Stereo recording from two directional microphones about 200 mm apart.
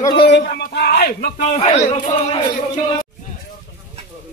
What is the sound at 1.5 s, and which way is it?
Speech, 35° left (ahead or behind).